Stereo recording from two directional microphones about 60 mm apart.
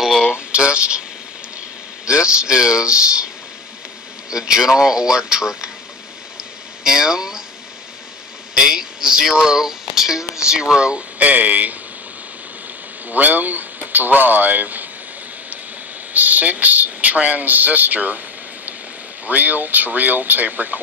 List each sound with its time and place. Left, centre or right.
0.0 s a sound: centre
0.3 s speech: centre
2.0 s speech: centre
4.3 s speech: centre
6.3 s a sound: centre
8.5 s speech: centre
13.1 s speech: right
16.1 s speech: right
19.2 s speech: right